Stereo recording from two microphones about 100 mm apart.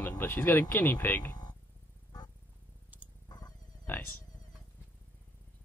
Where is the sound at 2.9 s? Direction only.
15° right (ahead or behind).